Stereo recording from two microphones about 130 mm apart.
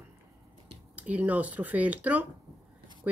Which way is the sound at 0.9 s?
10° right (ahead or behind).